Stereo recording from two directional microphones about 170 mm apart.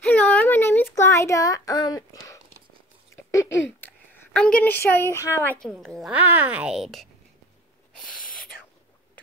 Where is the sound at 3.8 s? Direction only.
10° left (ahead or behind).